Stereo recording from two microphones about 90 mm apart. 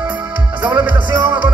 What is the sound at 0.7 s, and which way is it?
Music, 20° right (ahead or behind).